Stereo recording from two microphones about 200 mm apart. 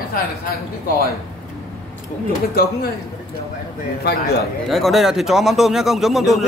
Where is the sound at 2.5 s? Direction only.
50° left (ahead or behind).